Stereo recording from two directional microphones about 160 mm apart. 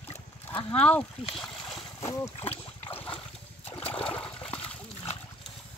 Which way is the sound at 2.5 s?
35° left (ahead or behind).